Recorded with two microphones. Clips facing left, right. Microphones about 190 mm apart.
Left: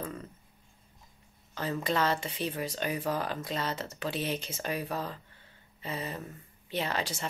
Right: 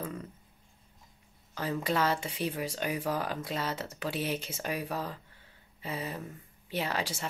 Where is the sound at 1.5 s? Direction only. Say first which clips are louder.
Even; 10° right (ahead or behind).